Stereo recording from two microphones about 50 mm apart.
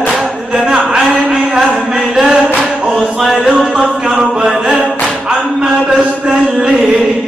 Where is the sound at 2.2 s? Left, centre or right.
Centre.